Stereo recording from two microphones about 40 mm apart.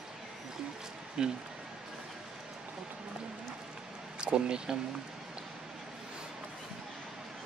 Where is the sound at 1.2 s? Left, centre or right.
Centre.